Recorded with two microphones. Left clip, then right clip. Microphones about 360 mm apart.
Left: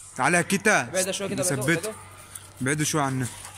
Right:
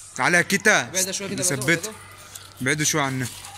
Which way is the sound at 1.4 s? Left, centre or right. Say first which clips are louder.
Right 4 dB; centre.